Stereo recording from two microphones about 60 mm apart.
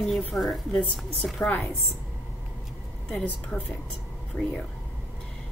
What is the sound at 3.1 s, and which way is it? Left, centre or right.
A woman's voice, left.